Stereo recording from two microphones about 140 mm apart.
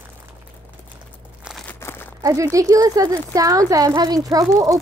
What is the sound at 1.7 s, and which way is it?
Crumpling, 15° left (ahead or behind).